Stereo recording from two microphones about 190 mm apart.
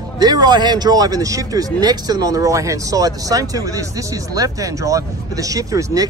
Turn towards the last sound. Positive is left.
turn(degrees=-15)  # may be behind; listen again after turning